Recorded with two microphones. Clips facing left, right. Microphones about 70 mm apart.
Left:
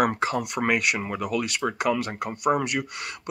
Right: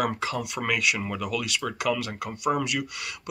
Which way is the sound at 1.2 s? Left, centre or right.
Left.